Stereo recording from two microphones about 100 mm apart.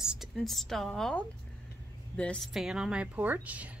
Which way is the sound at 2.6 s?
5° right (ahead or behind).